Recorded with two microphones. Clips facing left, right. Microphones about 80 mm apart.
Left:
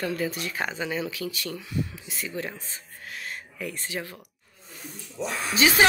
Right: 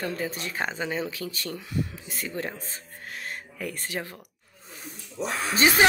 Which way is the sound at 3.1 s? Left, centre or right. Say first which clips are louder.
Even; right.